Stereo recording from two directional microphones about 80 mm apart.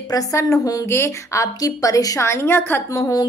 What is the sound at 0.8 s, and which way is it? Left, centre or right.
A woman's voice, left.